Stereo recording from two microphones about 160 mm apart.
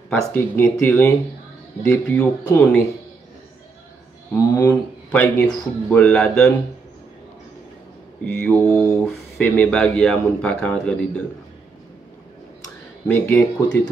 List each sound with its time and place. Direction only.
0.3 s speech: 15° left (ahead or behind)
4.3 s speech: 20° left (ahead or behind)
5.1 s speech: 10° left (ahead or behind)
8.7 s speech: 5° left (ahead or behind)
13.0 s speech: 15° left (ahead or behind)